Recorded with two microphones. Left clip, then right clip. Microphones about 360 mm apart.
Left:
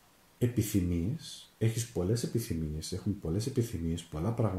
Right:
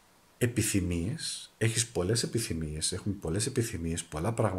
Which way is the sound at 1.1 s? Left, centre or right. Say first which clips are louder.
Right 7 dB; right.